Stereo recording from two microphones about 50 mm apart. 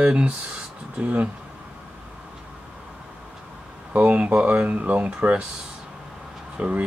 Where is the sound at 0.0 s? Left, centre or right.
Right.